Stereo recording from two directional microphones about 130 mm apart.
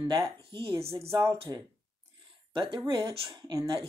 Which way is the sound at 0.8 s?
50° right (ahead or behind).